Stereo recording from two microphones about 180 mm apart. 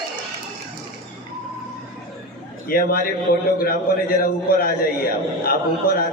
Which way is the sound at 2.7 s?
55° left (ahead or behind).